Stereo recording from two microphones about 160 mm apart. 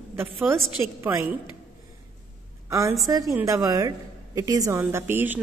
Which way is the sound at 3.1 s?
20° right (ahead or behind).